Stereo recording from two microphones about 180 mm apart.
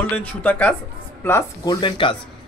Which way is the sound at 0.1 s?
10° left (ahead or behind).